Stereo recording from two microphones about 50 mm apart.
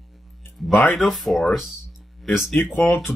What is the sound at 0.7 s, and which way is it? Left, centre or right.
Speech, left.